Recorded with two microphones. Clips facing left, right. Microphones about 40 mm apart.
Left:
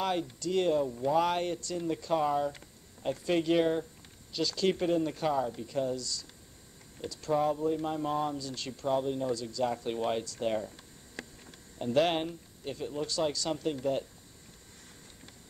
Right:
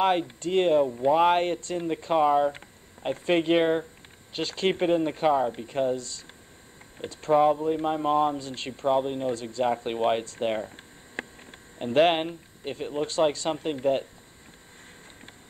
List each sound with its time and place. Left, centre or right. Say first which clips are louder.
0.0 s speech: right 8 dB; right